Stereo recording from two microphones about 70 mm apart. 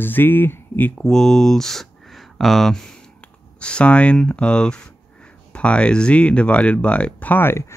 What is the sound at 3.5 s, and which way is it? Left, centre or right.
Speech, centre.